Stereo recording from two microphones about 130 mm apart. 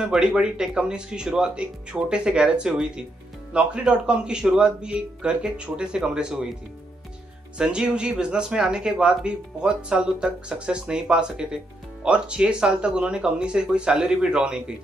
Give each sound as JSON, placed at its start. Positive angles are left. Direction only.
{"t": 0.0, "sound": "speech", "side_deg": -5}
{"t": 7.5, "sound": "speech", "side_deg": -5}